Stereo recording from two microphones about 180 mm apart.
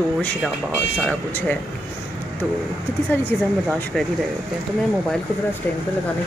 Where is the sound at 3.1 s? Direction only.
10° left (ahead or behind).